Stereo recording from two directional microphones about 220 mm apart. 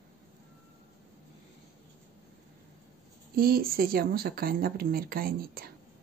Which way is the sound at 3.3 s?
40° right (ahead or behind).